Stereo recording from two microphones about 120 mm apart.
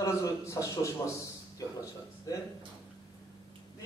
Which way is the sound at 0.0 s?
25° left (ahead or behind).